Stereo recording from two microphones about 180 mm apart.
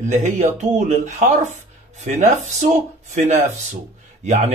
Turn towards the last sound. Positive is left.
turn(degrees=-40)  # may be behind; listen again after turning